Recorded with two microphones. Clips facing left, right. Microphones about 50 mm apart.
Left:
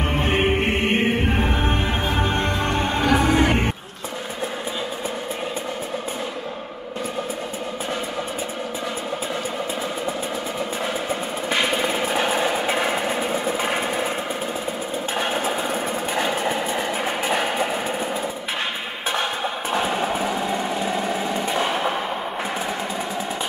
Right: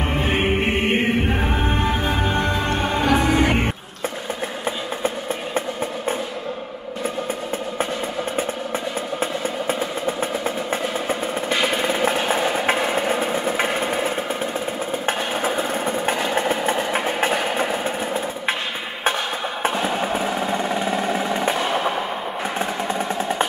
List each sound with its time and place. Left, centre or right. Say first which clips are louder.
0.2 s music: even; centre
12.7 s music: right 1 dB; centre
13.2 s vehicle: right 2 dB; right
16.3 s train: right 3 dB; right
20.2 s vehicle: right 1 dB; centre
21.6 s a sound: right 1 dB; centre